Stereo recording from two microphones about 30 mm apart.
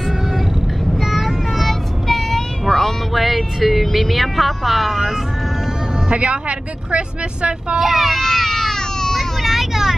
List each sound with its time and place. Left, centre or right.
0.9 s vehicle: centre
1.7 s child singing: centre
2.6 s vehicle: centre
3.2 s music: centre
3.9 s speech: centre
6.0 s a woman's voice: right
7.8 s a child's voice: centre
8.2 s baby cry: centre
9.4 s vehicle: centre